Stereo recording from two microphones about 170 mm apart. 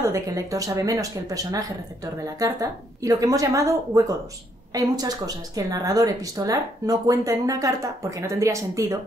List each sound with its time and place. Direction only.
0.0 s speech: 20° right (ahead or behind)